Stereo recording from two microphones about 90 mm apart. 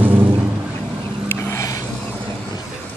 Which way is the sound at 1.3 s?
35° left (ahead or behind).